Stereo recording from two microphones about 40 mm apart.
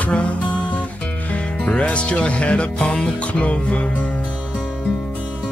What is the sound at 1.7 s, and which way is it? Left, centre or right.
Music, left.